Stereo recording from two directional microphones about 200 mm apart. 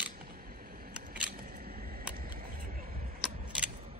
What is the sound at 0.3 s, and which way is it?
Single-lens reflex camera, 45° right (ahead or behind).